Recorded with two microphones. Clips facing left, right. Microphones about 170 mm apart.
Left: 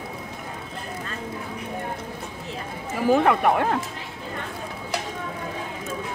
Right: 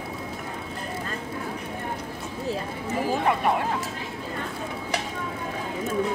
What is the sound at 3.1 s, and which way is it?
Speech, 60° left (ahead or behind).